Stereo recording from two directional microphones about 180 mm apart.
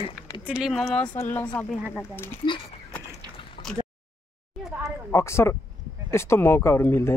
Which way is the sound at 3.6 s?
50° left (ahead or behind).